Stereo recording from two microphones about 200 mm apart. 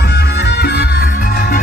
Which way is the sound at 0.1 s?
55° left (ahead or behind).